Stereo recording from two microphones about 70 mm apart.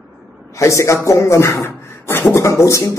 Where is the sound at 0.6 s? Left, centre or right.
Left.